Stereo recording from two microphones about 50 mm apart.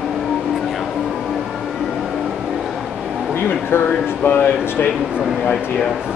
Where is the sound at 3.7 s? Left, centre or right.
Left.